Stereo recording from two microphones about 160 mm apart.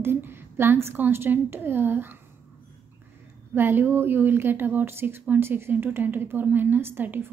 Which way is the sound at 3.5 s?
15° right (ahead or behind).